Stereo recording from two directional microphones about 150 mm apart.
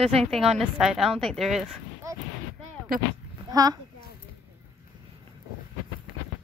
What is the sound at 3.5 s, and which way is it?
Speech, 25° right (ahead or behind).